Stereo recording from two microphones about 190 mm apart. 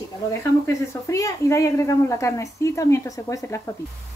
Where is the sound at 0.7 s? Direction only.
15° left (ahead or behind).